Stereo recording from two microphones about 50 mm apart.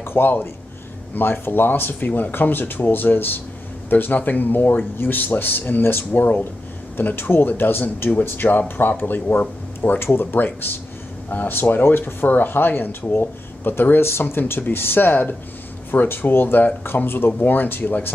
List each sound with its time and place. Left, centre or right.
0.0 s a man's voice: left
8.1 s speech: left